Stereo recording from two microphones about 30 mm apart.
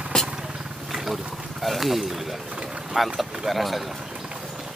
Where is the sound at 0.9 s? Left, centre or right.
Centre.